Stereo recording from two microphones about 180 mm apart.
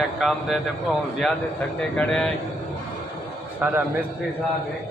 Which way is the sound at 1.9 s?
5° left (ahead or behind).